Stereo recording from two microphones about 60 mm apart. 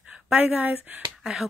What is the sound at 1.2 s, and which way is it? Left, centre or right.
Speech, centre.